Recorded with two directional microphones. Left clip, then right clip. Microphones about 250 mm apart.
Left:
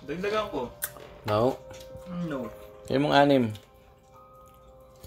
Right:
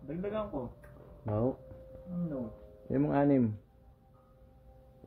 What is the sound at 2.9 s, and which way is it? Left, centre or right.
Speech, centre.